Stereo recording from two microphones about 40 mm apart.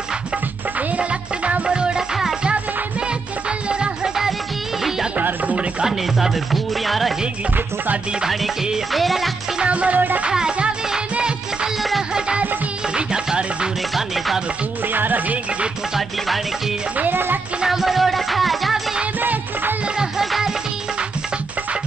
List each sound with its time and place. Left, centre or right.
0.7 s music: right
3.4 s music: right
6.1 s music: centre
7.5 s music: right
8.9 s music: centre
9.6 s music: right
9.9 s music: right
10.3 s music: centre
12.9 s music: right
13.9 s music: centre
14.9 s music: right
17.1 s music: right
17.6 s music: centre
19.1 s music: right